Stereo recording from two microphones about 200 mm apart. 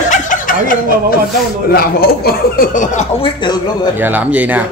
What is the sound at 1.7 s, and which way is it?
Speech, 50° left (ahead or behind).